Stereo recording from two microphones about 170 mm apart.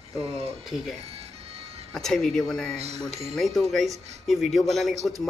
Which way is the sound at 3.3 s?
Centre (ahead or behind).